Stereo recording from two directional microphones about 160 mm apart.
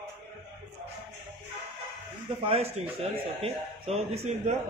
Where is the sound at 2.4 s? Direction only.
40° right (ahead or behind).